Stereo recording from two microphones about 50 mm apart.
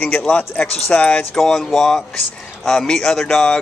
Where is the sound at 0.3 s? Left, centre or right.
Left.